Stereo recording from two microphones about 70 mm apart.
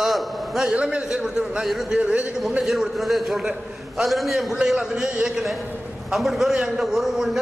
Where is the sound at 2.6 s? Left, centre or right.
Centre.